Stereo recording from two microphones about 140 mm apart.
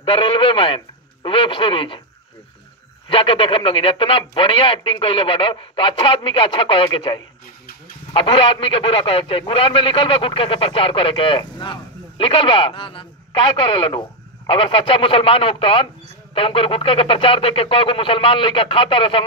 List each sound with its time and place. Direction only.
0.0 s radio: 40° left (ahead or behind)
3.1 s a man's voice: 40° left (ahead or behind)